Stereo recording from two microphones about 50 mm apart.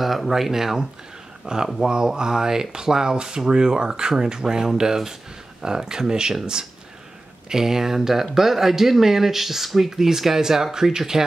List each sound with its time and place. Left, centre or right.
0.0 s speech: centre
1.5 s speech: centre